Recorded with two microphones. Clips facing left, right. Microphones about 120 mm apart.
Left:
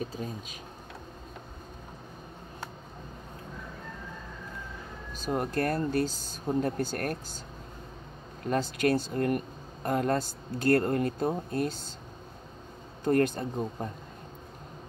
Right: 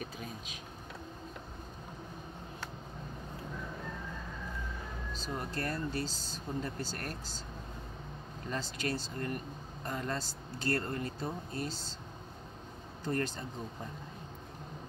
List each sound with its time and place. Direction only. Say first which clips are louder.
0.0 s speech: left 7 dB; 35° left (ahead or behind)
5.2 s speech: left 9 dB; 50° left (ahead or behind)
8.5 s speech: left 10 dB; 55° left (ahead or behind)
13.0 s speech: left 10 dB; 55° left (ahead or behind)